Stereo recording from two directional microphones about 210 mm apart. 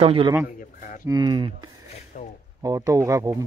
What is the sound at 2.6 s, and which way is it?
Speech, 15° right (ahead or behind).